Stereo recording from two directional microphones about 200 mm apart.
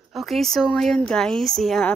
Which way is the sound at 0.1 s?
Centre (ahead or behind).